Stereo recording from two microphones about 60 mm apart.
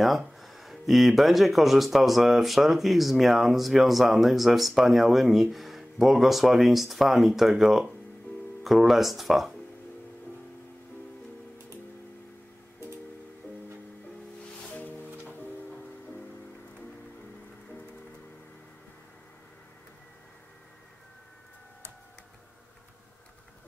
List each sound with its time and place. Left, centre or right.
0.0 s speech: centre
14.7 s music: left